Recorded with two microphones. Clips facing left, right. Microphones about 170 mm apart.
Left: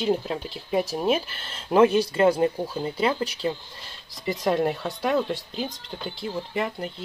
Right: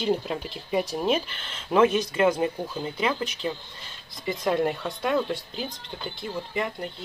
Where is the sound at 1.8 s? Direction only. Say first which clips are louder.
Left 2 dB; 35° left (ahead or behind).